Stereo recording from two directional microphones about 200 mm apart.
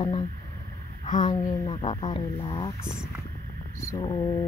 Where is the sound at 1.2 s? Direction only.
20° left (ahead or behind).